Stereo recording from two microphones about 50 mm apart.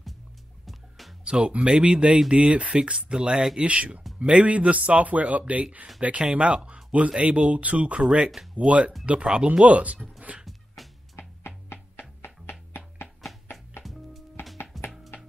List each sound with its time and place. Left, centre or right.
0.7 s music: centre
1.2 s a man's voice: right
3.6 s a man's voice: right
8.0 s speech: centre
8.5 s a man's voice: right
10.3 s music: right
10.8 s music: centre
11.1 s music: left
14.7 s music: centre